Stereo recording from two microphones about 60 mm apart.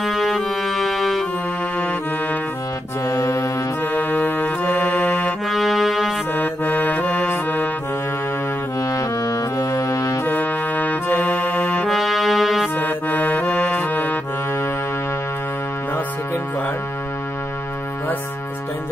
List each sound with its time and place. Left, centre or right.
0.0 s music: centre
3.1 s music: left
3.8 s music: left
5.5 s music: centre
6.3 s music: left
8.7 s music: left
10.2 s music: left
11.8 s music: centre
12.7 s music: left
13.5 s music: centre
13.8 s accordion: left